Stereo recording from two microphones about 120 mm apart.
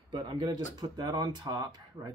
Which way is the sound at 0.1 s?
45° right (ahead or behind).